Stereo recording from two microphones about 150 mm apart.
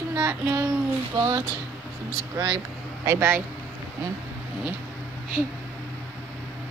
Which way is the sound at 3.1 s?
15° right (ahead or behind).